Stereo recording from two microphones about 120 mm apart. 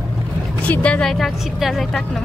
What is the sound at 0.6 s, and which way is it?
A woman's voice, 10° left (ahead or behind).